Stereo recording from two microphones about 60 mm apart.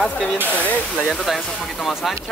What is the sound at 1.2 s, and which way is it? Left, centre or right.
Speech, centre.